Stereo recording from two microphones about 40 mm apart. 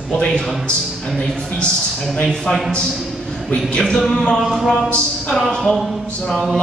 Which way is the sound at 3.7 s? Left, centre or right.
Left.